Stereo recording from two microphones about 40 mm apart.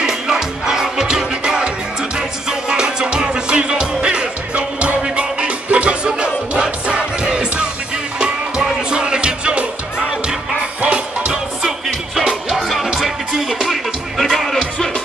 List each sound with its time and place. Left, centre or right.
0.0 s music: centre
2.7 s music: right
12.2 s music: centre